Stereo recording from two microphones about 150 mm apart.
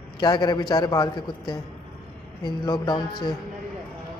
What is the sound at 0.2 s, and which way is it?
A man's voice, 30° left (ahead or behind).